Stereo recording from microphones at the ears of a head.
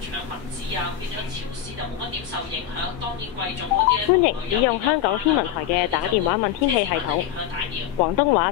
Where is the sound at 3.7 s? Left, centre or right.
Left.